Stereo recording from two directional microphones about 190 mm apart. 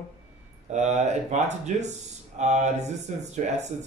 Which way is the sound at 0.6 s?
35° right (ahead or behind).